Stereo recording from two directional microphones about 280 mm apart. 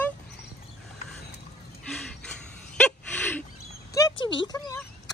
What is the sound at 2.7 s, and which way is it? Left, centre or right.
Gasp, centre.